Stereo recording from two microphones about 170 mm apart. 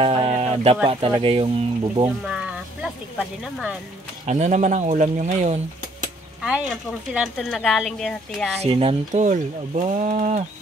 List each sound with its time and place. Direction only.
0.0 s music: 30° right (ahead or behind)
0.8 s speech: 30° right (ahead or behind)
2.2 s a sound: 5° right (ahead or behind)
4.3 s speech: 45° right (ahead or behind)
6.4 s speech: 5° right (ahead or behind)
8.6 s speech: 35° right (ahead or behind)